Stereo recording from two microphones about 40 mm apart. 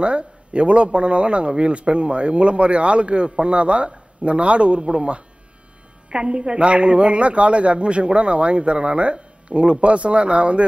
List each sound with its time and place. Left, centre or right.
0.0 s a man's voice: right